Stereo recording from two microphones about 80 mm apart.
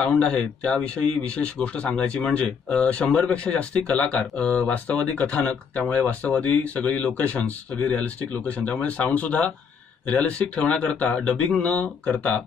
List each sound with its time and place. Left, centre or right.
0.0 s speech: centre